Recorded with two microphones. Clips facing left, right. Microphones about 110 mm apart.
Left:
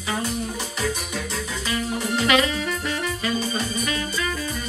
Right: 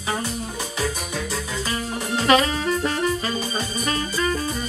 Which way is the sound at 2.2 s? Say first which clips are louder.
Right 4 dB; 35° right (ahead or behind).